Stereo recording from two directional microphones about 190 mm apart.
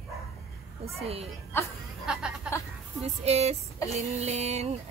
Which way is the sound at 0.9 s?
30° right (ahead or behind).